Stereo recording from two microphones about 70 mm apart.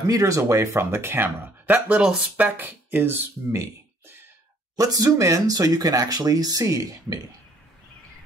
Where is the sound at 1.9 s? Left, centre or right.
Centre.